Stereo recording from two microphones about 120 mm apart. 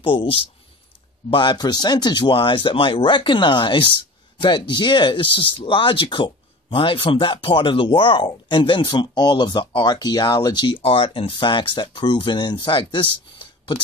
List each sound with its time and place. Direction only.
0.0 s speech: 45° left (ahead or behind)